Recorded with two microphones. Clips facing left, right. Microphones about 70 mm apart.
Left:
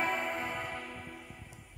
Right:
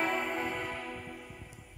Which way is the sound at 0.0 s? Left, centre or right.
Centre.